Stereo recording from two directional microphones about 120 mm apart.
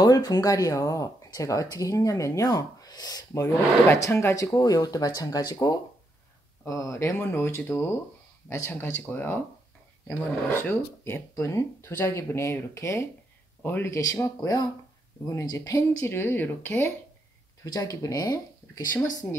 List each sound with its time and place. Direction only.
0.0 s speech: 35° left (ahead or behind); by 9.4 s 15° left (ahead or behind)
10.6 s speech: 20° left (ahead or behind)
17.6 s speech: 30° left (ahead or behind)